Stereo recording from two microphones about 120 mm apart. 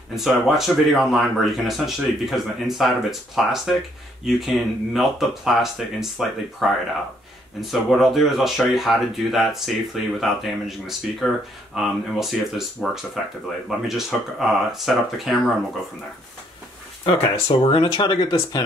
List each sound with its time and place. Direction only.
0.1 s speech: centre (ahead or behind)
17.0 s speech: 45° left (ahead or behind)